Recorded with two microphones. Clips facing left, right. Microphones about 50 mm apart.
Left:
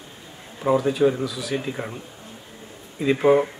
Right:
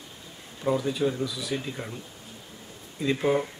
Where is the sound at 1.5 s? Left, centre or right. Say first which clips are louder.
Left 5 dB; left.